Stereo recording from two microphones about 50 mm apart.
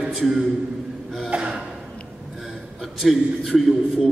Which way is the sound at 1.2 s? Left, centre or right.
Centre.